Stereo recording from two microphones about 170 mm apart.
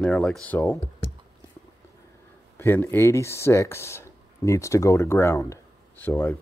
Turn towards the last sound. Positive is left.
turn(degrees=15)  # may be behind; listen again after turning